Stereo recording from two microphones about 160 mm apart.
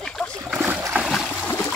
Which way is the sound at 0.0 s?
5° left (ahead or behind).